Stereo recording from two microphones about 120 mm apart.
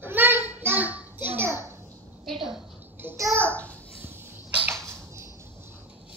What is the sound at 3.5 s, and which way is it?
Babbling, 10° left (ahead or behind).